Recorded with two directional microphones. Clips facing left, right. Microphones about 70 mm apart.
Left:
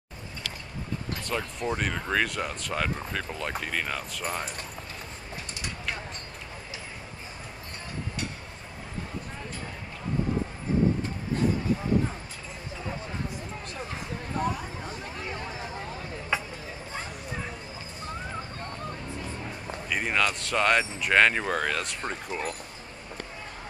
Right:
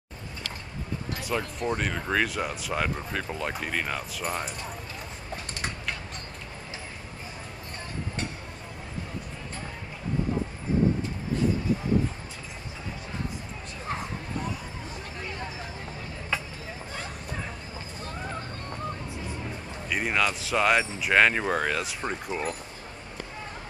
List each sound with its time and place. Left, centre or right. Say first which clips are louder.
1.2 s speech: right 2 dB; centre
16.3 s a sound: left 2 dB; centre
19.9 s speech: right 1 dB; centre